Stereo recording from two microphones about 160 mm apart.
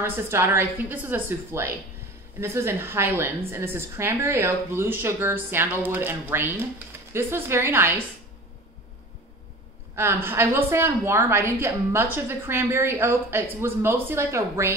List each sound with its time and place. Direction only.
0.0 s a woman's voice: 15° right (ahead or behind)
9.9 s a woman's voice: 15° right (ahead or behind)